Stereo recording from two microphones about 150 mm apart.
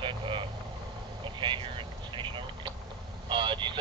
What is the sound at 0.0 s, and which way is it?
Vehicle, 35° right (ahead or behind).